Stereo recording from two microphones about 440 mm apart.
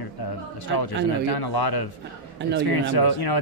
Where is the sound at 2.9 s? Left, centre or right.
Left.